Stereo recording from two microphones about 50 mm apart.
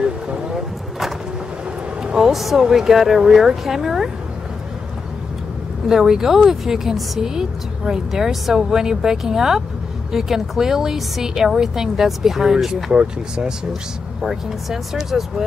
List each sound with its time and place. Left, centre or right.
0.0 s a sound: centre
2.1 s speech: centre
5.9 s speech: centre
12.9 s speech: centre
14.2 s speech: centre